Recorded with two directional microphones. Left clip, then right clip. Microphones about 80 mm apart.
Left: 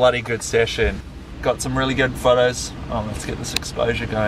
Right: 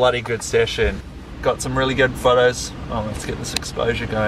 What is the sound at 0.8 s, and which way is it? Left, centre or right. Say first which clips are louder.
Speech: even; centre.